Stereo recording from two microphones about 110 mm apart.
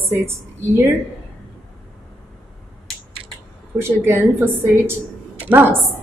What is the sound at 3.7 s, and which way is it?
A woman's voice, 20° right (ahead or behind).